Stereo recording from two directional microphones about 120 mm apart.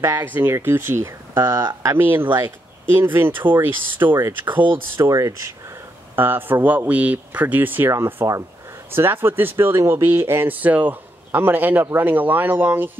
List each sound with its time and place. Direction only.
0.0 s speech: 20° right (ahead or behind)
1.4 s speech: 35° right (ahead or behind); by 2.2 s 20° right (ahead or behind)
2.2 s speech: 40° right (ahead or behind)
3.4 s speech: 15° right (ahead or behind)
4.5 s speech: 40° right (ahead or behind)
5.0 s speech: 25° right (ahead or behind)
6.1 s speech: 15° right (ahead or behind)